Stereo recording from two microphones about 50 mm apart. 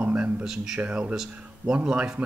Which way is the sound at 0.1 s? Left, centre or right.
Right.